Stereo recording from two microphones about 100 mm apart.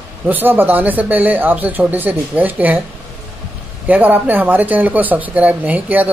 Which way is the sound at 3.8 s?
15° right (ahead or behind).